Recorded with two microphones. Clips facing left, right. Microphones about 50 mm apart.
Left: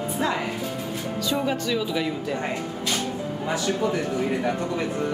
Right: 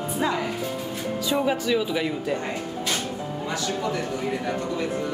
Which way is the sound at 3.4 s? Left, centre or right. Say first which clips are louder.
Left 3 dB; centre.